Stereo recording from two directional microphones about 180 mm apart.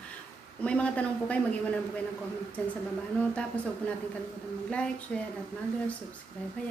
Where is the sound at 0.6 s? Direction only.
5° left (ahead or behind).